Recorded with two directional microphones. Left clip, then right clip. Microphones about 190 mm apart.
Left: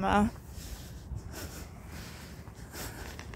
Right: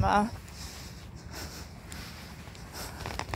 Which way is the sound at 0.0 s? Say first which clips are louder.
Right 2 dB; 50° left (ahead or behind).